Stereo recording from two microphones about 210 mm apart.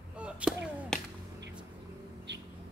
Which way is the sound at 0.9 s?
Centre (ahead or behind).